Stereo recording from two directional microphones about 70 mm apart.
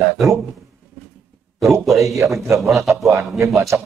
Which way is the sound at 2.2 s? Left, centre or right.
Right.